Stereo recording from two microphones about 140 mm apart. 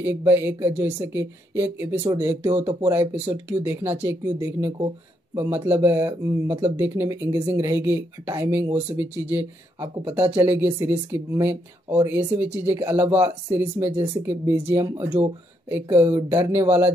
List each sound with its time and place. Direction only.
0.0 s speech: 15° right (ahead or behind)